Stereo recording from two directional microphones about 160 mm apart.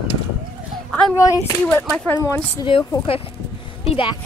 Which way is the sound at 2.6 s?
30° left (ahead or behind).